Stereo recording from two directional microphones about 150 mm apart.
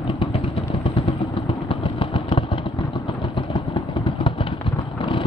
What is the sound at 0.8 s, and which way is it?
Vehicle, 40° left (ahead or behind).